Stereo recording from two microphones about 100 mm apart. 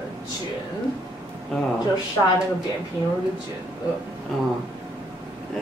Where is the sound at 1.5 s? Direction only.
5° left (ahead or behind).